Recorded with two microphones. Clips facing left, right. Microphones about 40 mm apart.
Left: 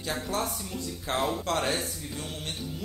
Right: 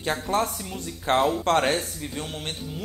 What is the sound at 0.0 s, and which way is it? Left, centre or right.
Speech, right.